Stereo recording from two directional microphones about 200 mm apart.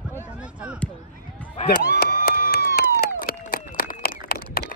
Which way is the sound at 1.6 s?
50° left (ahead or behind).